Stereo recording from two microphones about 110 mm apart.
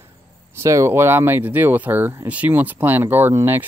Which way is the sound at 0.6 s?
25° right (ahead or behind).